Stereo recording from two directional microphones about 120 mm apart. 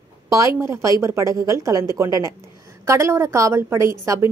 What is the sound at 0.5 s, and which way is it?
A woman's voice, 25° right (ahead or behind).